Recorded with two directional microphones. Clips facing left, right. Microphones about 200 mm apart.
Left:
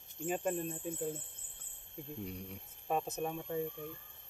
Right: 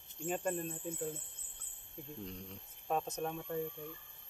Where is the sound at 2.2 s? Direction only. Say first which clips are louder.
Left 3 dB; 10° left (ahead or behind).